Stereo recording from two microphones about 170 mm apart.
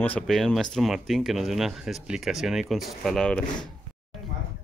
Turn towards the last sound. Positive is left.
turn(degrees=5)  # may be behind; listen again after turning